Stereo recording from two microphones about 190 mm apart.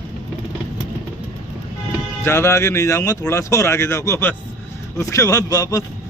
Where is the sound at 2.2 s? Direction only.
15° left (ahead or behind).